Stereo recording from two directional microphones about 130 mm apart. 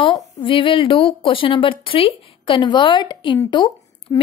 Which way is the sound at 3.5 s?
35° left (ahead or behind).